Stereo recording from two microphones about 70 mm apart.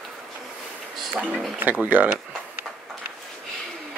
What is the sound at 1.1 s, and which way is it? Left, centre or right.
Speech, right.